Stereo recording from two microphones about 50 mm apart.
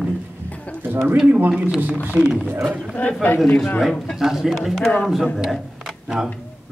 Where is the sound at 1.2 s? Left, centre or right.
Right.